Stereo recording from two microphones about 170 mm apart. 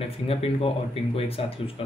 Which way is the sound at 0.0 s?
35° left (ahead or behind).